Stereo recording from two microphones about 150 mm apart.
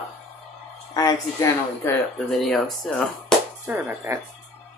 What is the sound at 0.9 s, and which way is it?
Speech, 25° left (ahead or behind).